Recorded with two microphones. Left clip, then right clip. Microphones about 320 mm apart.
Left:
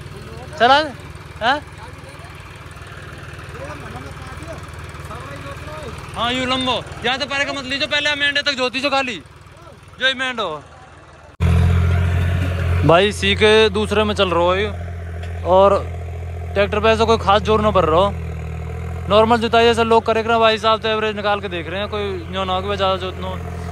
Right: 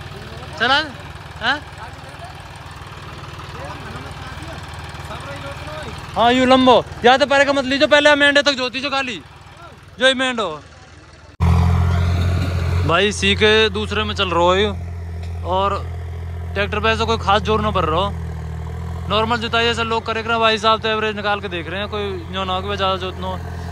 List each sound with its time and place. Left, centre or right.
0.6 s speech: centre
6.1 s speech: centre
8.5 s speech: centre
11.3 s vehicle: centre
15.4 s speech: centre